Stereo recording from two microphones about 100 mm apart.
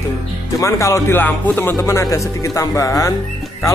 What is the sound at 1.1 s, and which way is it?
Speech, 15° left (ahead or behind).